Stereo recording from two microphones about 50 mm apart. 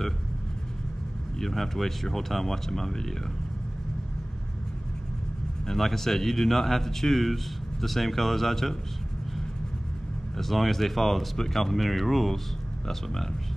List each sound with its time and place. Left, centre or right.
1.4 s speech: centre
5.7 s speech: centre
10.3 s speech: centre